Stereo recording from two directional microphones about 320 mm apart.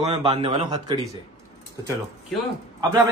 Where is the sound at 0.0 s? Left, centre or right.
Centre.